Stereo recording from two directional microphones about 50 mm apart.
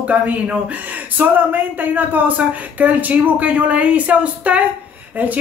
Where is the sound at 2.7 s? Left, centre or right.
Right.